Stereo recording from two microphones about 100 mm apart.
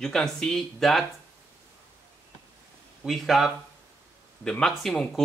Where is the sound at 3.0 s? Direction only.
Centre (ahead or behind).